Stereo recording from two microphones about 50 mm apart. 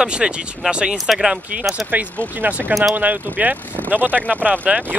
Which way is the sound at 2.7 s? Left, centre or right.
Centre.